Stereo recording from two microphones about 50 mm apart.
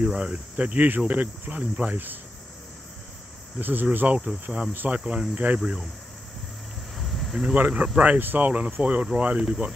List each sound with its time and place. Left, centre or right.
0.0 s speech: right
3.5 s speech: right
4.2 s speech: right
7.0 s a sound: centre
7.6 s speech: centre
8.0 s speech: right; by 9.8 s centre